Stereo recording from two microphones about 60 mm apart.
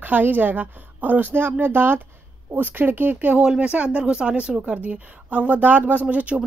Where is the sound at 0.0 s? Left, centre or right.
Right.